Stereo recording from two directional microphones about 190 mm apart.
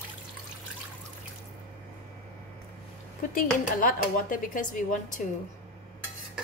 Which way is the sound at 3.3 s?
45° left (ahead or behind).